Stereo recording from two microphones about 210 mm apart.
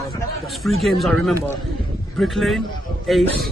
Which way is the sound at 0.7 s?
Centre (ahead or behind).